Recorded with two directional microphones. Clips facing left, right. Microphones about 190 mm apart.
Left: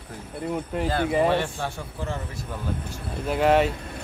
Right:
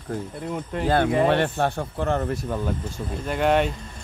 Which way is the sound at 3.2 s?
5° left (ahead or behind).